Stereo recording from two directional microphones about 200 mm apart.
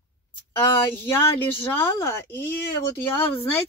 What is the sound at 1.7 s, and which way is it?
Speech, 10° left (ahead or behind).